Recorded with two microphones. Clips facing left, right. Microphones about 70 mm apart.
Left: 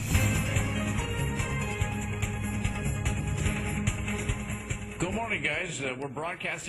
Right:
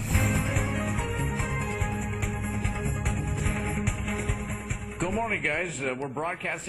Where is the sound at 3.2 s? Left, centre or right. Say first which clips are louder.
Right 2 dB; centre.